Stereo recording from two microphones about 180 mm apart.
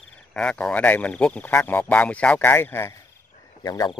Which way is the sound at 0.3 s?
5° left (ahead or behind).